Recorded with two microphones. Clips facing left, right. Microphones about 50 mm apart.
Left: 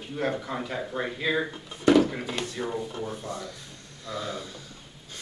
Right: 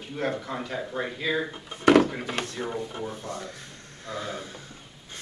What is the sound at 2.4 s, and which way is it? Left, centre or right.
Speech, right.